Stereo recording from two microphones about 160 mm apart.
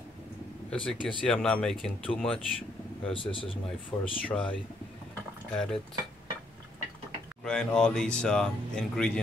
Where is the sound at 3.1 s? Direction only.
35° left (ahead or behind).